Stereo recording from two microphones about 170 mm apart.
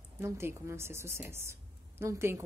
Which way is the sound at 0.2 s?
15° right (ahead or behind).